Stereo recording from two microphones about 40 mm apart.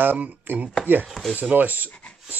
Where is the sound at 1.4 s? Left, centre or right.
Right.